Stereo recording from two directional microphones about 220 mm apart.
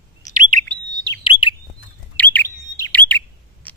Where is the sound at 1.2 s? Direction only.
20° left (ahead or behind).